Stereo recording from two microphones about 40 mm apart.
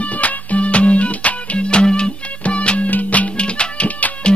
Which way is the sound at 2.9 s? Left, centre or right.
Left.